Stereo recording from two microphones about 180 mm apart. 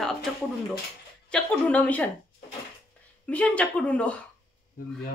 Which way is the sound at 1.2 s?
5° left (ahead or behind).